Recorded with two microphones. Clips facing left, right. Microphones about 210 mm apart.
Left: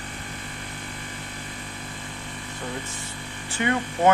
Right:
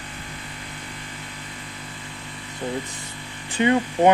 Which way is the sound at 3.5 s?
15° right (ahead or behind).